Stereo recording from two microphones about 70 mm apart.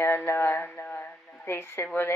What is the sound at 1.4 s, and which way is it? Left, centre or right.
Speech, left.